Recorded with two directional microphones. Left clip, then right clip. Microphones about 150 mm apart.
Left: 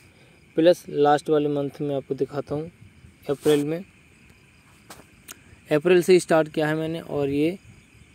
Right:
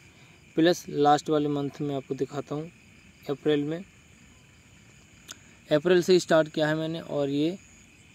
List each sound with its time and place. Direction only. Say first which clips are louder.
0.6 s speech: left 5 dB; 10° right (ahead or behind); by 3.8 s 20° left (ahead or behind)
5.2 s speech: left 1 dB; 10° left (ahead or behind)